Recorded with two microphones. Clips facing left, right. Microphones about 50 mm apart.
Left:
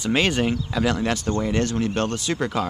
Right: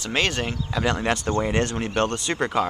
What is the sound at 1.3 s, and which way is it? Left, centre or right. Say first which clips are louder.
Speech: even; right.